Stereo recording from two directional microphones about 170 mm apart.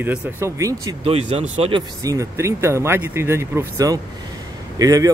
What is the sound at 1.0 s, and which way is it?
Speech, 35° right (ahead or behind).